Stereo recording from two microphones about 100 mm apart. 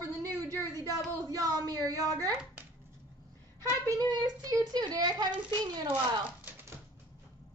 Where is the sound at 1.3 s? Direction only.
35° right (ahead or behind).